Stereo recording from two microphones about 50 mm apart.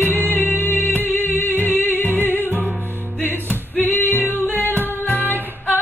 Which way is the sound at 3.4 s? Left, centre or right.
Left.